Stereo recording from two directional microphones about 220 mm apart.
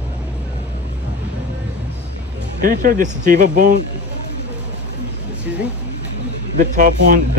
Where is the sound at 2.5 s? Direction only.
40° right (ahead or behind).